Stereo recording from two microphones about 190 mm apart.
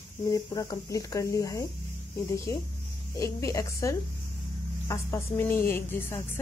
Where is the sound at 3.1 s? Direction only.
15° left (ahead or behind).